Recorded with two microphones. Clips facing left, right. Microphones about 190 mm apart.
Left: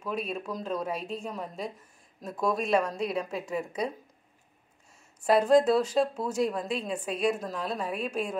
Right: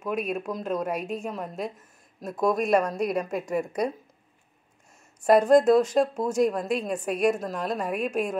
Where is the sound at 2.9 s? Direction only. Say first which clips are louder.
Right 4 dB; 10° right (ahead or behind).